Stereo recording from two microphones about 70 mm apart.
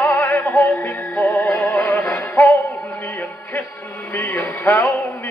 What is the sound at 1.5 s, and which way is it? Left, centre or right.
Music, left.